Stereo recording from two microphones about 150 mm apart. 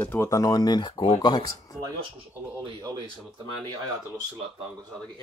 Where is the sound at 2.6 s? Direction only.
30° right (ahead or behind).